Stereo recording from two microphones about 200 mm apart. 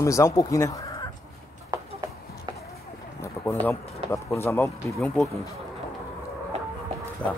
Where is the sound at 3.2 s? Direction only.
10° left (ahead or behind).